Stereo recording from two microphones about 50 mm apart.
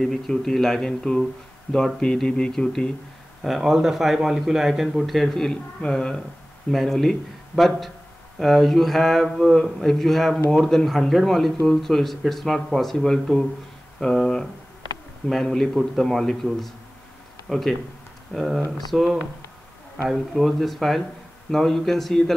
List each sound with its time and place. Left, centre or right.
0.0 s speech: centre
1.7 s speech: left
2.2 s speech: centre
3.4 s speech: centre
5.8 s speech: centre
6.7 s speech: centre
9.4 s speech: centre
20.1 s speech: centre